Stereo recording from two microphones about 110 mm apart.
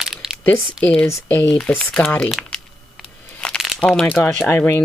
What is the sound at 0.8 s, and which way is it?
Speech, 10° left (ahead or behind).